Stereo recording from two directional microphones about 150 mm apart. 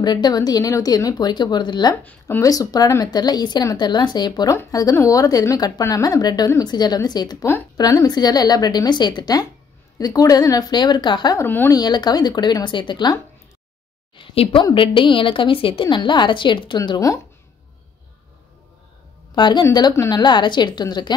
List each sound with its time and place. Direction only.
0.0 s a woman's voice: 30° left (ahead or behind)
2.0 s a woman's voice: 15° left (ahead or behind)
11.4 s speech: 15° left (ahead or behind)
11.7 s a woman's voice: 25° left (ahead or behind)
14.1 s a sound: 35° left (ahead or behind)
14.6 s a woman's voice: 35° left (ahead or behind)
19.3 s a woman's voice: 30° left (ahead or behind)